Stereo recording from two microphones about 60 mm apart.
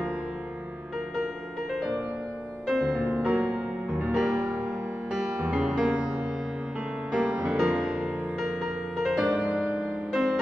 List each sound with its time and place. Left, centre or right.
1.7 s music: centre
3.3 s music: right; by 9.3 s centre
9.4 s music: right
10.1 s music: centre